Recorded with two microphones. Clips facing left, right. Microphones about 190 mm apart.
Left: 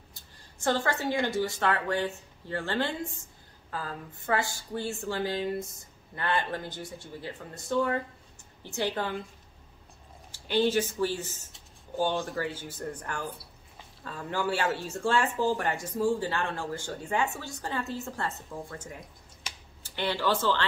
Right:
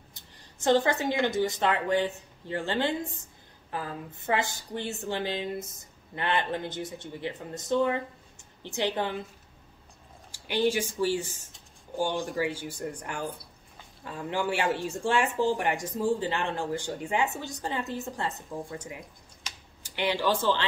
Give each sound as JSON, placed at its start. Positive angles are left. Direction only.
{"t": 0.1, "sound": "speech", "side_deg": -20}
{"t": 10.3, "sound": "speech", "side_deg": -10}